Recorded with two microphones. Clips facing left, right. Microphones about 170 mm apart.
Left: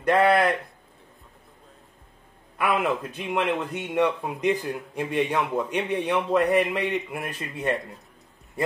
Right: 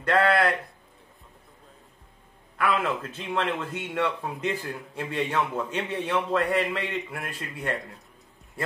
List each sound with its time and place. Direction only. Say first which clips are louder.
0.0 s speech: left 3 dB; 15° left (ahead or behind)
2.5 s speech: left 2 dB; 15° left (ahead or behind)